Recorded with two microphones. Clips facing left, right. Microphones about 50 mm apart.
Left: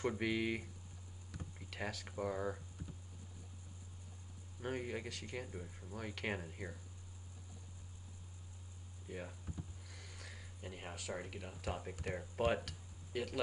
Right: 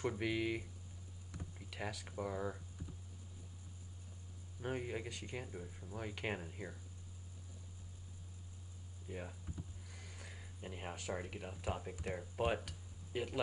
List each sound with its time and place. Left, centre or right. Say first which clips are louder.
0.0 s speech: left 1 dB; centre
1.7 s speech: left 1 dB; centre
2.0 s speech: left 2 dB; centre
4.6 s speech: even; centre
5.6 s speech: even; centre
5.9 s speech: even; centre
9.0 s speech: even; centre
9.8 s a sound: even; centre
11.1 s speech: right 1 dB; centre
13.1 s speech: even; right